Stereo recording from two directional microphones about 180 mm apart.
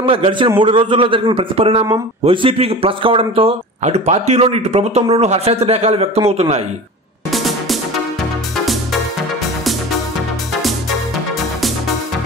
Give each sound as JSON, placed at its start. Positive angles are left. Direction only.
{"t": 0.0, "sound": "a man's voice", "side_deg": -30}
{"t": 7.2, "sound": "music", "side_deg": 0}